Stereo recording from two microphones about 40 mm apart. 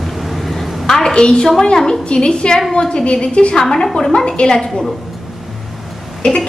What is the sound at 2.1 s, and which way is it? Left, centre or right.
A woman's voice, left.